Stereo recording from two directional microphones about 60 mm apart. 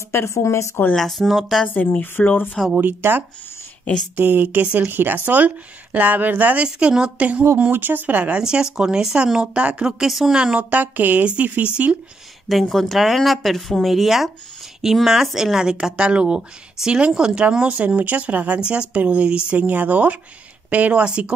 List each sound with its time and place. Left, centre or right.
0.1 s speech: left
0.9 s speech: centre
1.7 s speech: left
2.7 s speech: right
7.7 s speech: right
8.4 s speech: centre
10.6 s speech: right
12.4 s speech: centre